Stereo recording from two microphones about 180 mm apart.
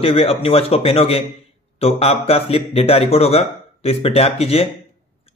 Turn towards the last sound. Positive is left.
turn(degrees=35)  # may be behind; listen again after turning